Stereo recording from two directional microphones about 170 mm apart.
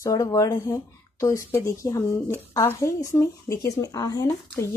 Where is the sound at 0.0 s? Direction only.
20° left (ahead or behind).